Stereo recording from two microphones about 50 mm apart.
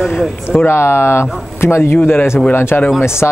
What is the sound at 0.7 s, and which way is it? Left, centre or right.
Speech, left.